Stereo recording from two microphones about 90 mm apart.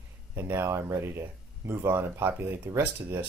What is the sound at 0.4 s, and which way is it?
Speech, 25° right (ahead or behind).